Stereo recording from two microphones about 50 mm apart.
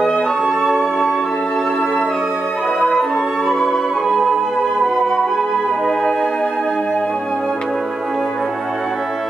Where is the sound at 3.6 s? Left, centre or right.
Centre.